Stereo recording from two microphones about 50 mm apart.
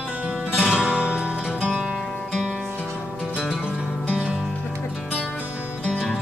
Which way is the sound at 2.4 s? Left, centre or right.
Centre.